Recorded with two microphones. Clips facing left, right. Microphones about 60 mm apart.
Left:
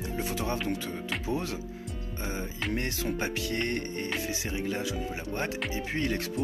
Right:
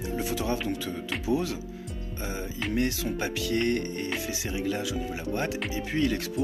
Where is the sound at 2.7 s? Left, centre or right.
Left.